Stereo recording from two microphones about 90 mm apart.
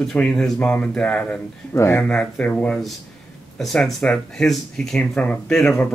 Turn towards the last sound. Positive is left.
turn(degrees=5)  # may be behind; listen again after turning